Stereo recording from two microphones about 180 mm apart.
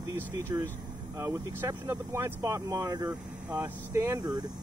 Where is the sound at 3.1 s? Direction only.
10° right (ahead or behind).